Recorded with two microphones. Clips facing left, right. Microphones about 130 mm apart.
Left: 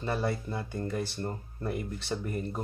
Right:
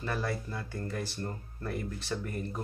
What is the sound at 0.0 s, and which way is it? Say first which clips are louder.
Speech: left 3 dB; 25° left (ahead or behind).